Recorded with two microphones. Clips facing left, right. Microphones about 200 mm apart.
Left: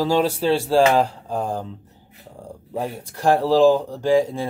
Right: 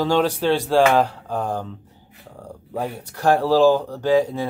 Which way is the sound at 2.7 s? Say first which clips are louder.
Even; 30° left (ahead or behind).